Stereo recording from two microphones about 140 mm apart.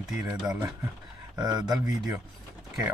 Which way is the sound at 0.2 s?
10° right (ahead or behind).